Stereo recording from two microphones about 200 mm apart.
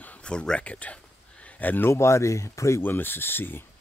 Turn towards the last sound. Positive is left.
turn(degrees=10)  # may be behind; listen again after turning